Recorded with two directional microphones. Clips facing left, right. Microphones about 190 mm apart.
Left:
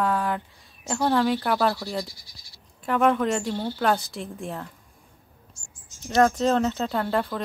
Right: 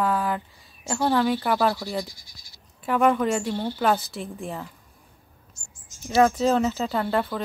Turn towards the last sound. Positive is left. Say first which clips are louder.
# right 1 dB
turn(degrees=0)  # may be behind; listen again after turning